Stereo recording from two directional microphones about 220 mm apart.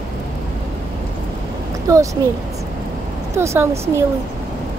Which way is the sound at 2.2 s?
20° right (ahead or behind).